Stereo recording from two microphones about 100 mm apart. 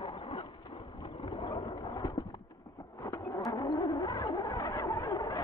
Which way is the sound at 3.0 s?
35° left (ahead or behind).